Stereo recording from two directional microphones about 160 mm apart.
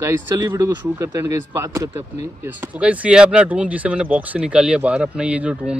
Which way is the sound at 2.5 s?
10° right (ahead or behind).